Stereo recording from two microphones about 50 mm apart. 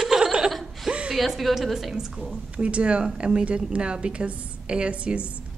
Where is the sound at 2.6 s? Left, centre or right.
Right.